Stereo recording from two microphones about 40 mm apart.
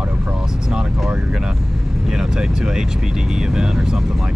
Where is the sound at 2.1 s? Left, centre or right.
Centre.